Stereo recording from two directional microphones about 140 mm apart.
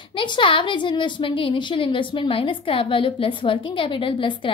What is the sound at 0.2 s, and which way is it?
A woman's voice, 35° left (ahead or behind).